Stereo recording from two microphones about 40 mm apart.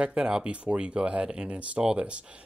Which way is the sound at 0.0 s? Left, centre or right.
Right.